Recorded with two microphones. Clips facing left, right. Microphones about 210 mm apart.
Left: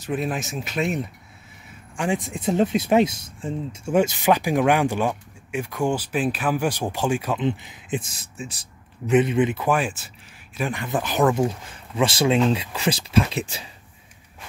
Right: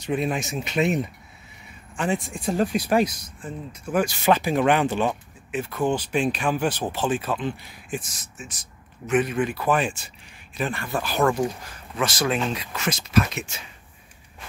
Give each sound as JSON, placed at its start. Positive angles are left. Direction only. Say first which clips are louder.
{"t": 0.0, "sound": "speech", "louder": "right 1 dB", "side_deg": 0}
{"t": 2.0, "sound": "speech", "louder": "left 1 dB", "side_deg": 15}
{"t": 9.7, "sound": "speech", "louder": "even", "side_deg": 5}
{"t": 10.6, "sound": "speech", "louder": "left 2 dB", "side_deg": 15}